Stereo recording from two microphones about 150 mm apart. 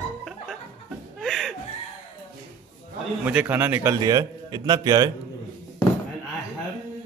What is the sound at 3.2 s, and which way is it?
Speech, 10° right (ahead or behind).